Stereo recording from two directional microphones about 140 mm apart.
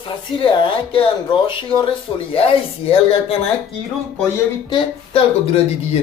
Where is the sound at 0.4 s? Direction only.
40° left (ahead or behind).